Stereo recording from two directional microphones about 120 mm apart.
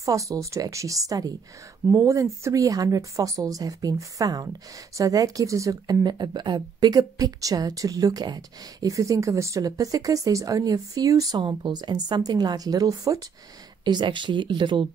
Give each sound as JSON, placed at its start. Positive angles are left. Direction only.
{"t": 0.0, "sound": "speech", "side_deg": -30}
{"t": 13.8, "sound": "speech", "side_deg": -40}